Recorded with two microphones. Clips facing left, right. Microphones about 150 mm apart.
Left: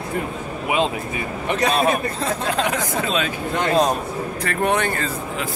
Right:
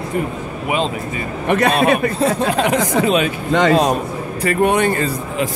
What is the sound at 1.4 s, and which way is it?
Speech, 60° right (ahead or behind).